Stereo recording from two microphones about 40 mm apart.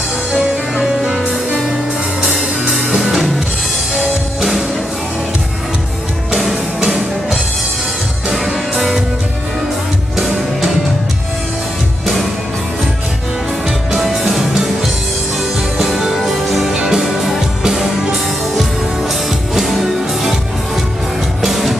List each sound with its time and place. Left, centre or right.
0.7 s music: centre
6.3 s music: centre
10.1 s music: centre
13.9 s music: centre
15.8 s music: centre
16.6 s music: centre
17.0 s music: centre
19.5 s music: centre
21.4 s music: centre